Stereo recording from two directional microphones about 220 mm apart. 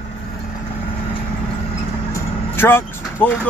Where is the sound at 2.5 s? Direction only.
10° left (ahead or behind).